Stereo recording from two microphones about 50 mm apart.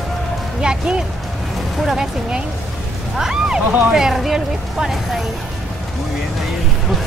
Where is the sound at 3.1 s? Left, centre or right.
Centre.